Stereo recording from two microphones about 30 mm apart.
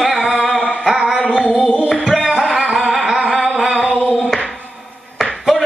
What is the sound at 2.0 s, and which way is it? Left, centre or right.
Music, centre.